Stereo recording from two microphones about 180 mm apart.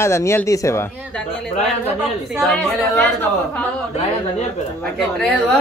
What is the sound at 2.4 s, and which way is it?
Speech, 5° left (ahead or behind).